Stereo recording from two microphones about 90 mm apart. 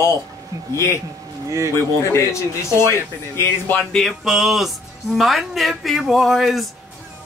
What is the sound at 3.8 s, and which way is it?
Speech, centre (ahead or behind).